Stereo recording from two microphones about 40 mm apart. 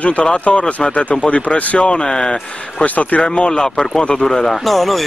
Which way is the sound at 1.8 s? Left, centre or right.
Left.